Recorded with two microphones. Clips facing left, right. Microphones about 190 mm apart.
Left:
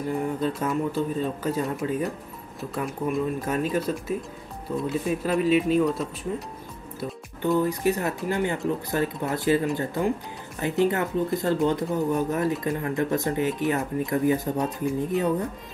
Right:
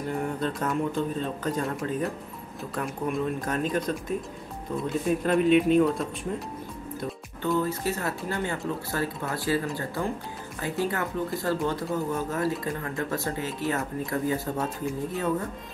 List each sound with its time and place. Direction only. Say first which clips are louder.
0.1 s speech: left 3 dB; 5° left (ahead or behind)
7.4 s speech: left 4 dB; 15° left (ahead or behind)